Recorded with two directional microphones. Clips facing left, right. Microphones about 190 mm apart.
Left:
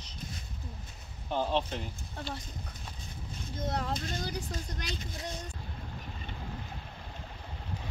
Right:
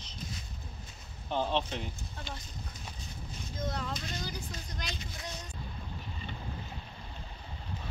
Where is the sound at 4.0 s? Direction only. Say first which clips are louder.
Left 3 dB; 45° left (ahead or behind).